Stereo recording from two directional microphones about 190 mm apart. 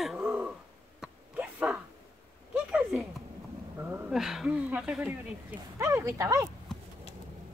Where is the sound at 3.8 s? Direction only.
10° right (ahead or behind).